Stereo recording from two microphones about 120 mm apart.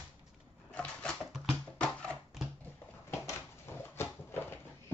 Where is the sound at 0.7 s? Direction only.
10° left (ahead or behind).